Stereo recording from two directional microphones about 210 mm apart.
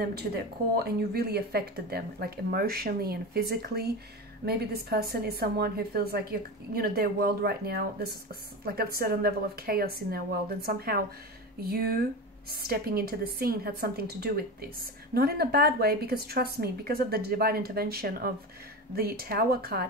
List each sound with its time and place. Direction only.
0.0 s a woman's voice: 50° right (ahead or behind)
12.4 s a woman's voice: 45° right (ahead or behind)